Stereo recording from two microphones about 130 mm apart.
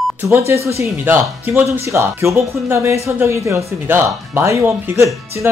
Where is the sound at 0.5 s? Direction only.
20° right (ahead or behind).